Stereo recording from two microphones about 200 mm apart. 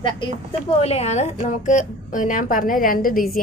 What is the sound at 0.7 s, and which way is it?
A woman's voice, 30° left (ahead or behind).